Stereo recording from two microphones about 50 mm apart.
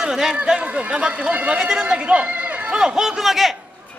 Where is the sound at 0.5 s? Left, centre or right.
Right.